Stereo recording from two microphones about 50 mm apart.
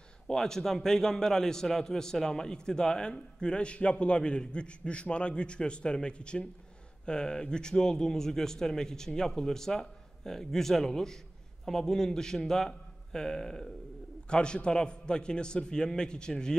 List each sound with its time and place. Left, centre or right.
0.3 s a man's voice: centre